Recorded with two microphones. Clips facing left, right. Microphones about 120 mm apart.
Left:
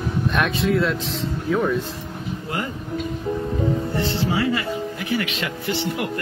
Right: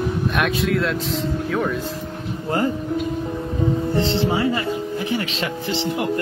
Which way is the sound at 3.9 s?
25° right (ahead or behind).